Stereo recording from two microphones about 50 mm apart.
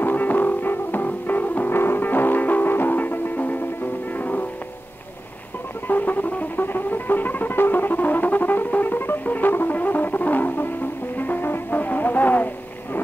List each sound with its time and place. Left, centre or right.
0.0 s music: left
1.7 s music: left
5.9 s music: left